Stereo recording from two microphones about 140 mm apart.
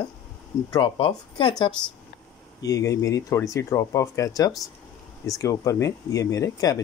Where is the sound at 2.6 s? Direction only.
25° left (ahead or behind).